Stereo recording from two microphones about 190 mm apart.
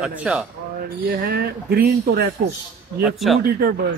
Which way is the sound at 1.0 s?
50° right (ahead or behind).